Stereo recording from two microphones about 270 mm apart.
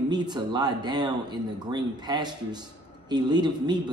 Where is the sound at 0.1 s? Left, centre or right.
Centre.